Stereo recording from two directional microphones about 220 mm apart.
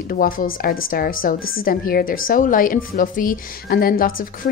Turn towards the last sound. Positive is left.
turn(degrees=40)  # may be behind; listen again after turning